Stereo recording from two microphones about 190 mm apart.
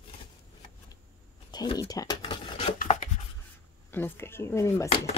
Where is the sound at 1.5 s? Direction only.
20° left (ahead or behind).